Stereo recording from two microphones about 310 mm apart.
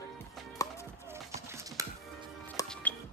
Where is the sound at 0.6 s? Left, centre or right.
Centre.